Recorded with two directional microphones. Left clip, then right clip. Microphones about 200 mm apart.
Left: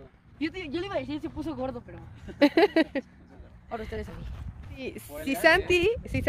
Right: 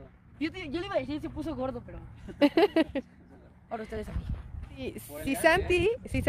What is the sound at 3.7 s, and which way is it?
Speech, 30° right (ahead or behind).